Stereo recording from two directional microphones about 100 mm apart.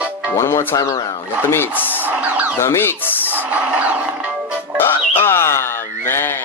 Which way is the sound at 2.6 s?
25° left (ahead or behind).